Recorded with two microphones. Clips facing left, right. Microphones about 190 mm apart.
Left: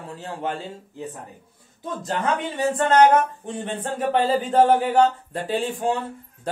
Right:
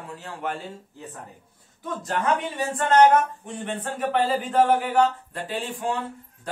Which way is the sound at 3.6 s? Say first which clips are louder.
Left 2 dB; 30° left (ahead or behind).